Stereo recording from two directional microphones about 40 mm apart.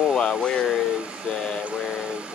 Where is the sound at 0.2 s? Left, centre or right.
Left.